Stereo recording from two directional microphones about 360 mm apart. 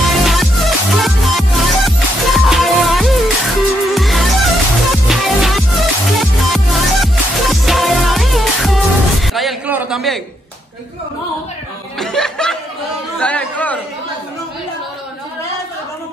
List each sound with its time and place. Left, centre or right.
0.2 s music: centre
12.0 s chuckle: centre
13.2 s chatter: centre